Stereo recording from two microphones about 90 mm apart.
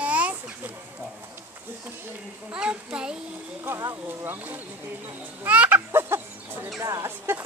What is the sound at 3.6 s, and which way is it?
Speech, 35° right (ahead or behind).